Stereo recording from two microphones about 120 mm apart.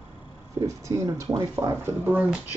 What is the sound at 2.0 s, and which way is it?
Speech, 15° right (ahead or behind).